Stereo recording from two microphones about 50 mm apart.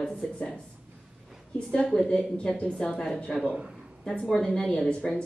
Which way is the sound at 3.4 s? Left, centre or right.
Right.